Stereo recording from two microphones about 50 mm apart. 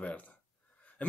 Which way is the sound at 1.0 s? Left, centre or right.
Left.